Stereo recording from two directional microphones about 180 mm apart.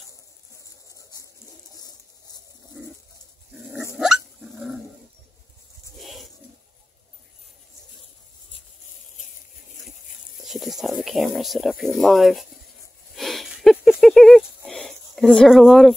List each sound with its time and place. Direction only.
0.8 s a sound: 20° left (ahead or behind)
3.7 s dog: 10° right (ahead or behind)
5.9 s bird: centre (ahead or behind)
10.4 s speech: centre (ahead or behind)
13.1 s wheeze: centre (ahead or behind)
14.7 s a sound: centre (ahead or behind)